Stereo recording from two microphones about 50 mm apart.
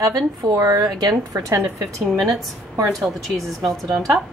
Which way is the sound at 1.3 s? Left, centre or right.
Right.